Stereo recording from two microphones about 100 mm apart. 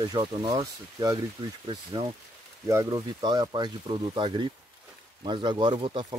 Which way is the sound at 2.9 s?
45° right (ahead or behind).